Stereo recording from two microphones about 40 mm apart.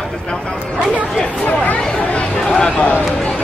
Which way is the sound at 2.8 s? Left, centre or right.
Left.